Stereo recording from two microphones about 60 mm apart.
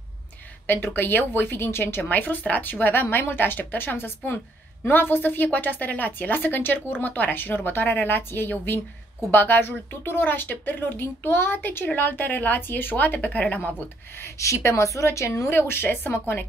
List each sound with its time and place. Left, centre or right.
0.7 s speech: left
14.2 s speech: left